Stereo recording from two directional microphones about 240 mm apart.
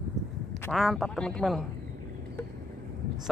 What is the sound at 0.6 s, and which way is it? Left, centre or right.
Speech, centre.